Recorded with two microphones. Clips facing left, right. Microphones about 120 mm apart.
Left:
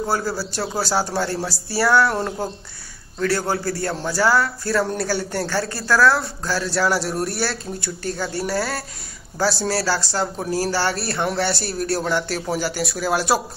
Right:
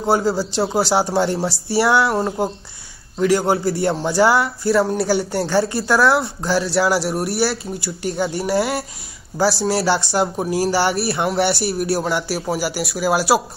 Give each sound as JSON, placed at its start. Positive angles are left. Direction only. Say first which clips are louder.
{"t": 0.0, "sound": "speech", "louder": "right 5 dB", "side_deg": -20}
{"t": 6.6, "sound": "speech", "louder": "right 1 dB", "side_deg": -5}